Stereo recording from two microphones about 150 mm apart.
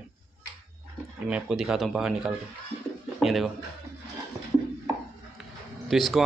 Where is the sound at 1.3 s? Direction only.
5° right (ahead or behind).